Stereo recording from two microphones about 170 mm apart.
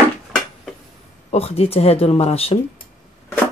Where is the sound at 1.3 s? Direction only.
35° left (ahead or behind).